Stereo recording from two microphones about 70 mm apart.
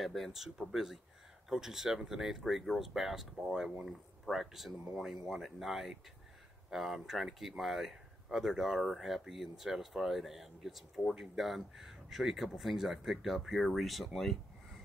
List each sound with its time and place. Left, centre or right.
0.0 s speech: centre